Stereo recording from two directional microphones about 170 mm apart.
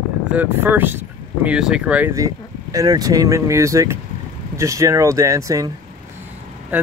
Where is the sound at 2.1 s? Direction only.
20° right (ahead or behind).